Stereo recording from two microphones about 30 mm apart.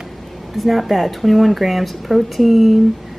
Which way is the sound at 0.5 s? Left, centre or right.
Centre.